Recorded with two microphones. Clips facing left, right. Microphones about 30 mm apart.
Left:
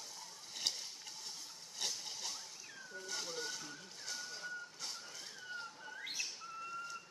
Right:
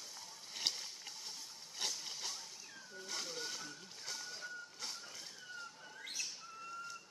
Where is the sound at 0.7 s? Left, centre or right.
Centre.